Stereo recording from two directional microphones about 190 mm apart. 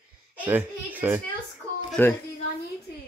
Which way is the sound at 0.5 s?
10° right (ahead or behind).